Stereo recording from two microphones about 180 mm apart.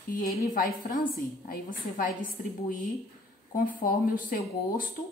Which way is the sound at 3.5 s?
50° left (ahead or behind).